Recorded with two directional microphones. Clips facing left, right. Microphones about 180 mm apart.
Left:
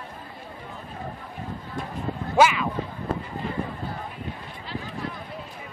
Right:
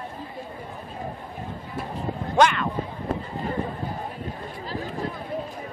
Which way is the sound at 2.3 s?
5° left (ahead or behind).